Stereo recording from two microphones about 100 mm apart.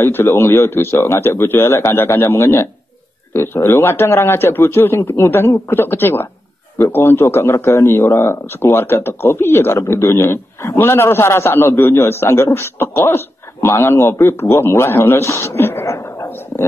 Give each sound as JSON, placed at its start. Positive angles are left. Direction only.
{"t": 0.0, "sound": "a man's voice", "side_deg": 25}